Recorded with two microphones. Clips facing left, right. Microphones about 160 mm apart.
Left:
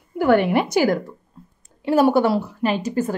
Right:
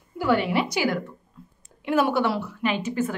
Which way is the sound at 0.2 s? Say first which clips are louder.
Left 6 dB; 55° left (ahead or behind).